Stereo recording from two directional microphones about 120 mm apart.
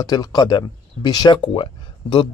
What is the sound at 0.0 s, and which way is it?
Speech, 35° left (ahead or behind).